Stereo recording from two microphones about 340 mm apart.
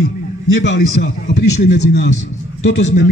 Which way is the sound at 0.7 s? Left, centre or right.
Left.